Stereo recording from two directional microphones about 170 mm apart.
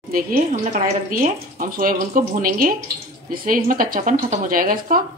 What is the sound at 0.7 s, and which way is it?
Speech, 45° right (ahead or behind).